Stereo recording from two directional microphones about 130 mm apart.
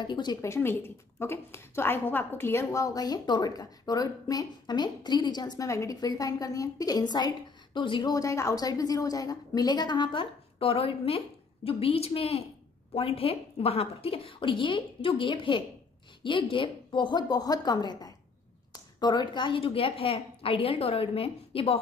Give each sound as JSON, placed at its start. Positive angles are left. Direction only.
{"t": 0.0, "sound": "a woman's voice", "side_deg": 35}
{"t": 0.4, "sound": "a woman's voice", "side_deg": 20}